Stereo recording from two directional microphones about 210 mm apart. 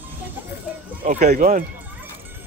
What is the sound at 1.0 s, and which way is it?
Speech, 35° right (ahead or behind).